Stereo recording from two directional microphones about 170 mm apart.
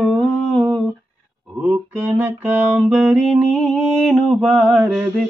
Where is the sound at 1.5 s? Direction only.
10° right (ahead or behind).